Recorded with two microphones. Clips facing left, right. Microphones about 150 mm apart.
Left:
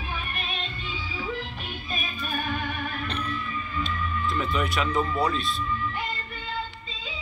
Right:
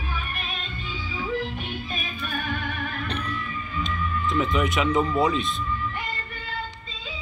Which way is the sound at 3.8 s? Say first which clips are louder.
Right 4 dB; 15° right (ahead or behind).